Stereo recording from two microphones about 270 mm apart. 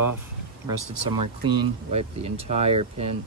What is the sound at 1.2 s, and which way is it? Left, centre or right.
Speech, right.